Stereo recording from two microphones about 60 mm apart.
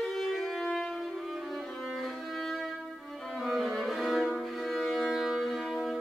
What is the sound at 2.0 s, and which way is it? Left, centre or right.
Music, centre.